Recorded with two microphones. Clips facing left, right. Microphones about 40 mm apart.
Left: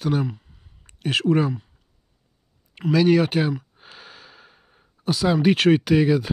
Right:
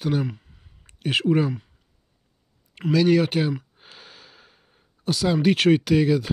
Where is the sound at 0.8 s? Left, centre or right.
Centre.